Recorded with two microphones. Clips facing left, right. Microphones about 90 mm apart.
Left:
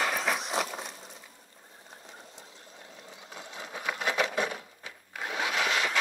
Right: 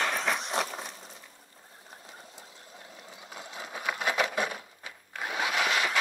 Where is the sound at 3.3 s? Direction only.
10° right (ahead or behind).